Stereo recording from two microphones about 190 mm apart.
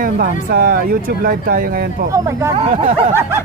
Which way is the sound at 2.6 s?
40° right (ahead or behind).